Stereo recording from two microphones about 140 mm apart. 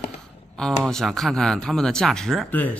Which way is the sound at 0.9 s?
Centre (ahead or behind).